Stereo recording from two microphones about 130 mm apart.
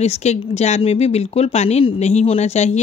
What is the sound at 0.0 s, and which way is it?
Speech, 55° left (ahead or behind).